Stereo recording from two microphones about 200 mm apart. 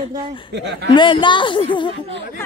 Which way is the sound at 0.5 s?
60° right (ahead or behind).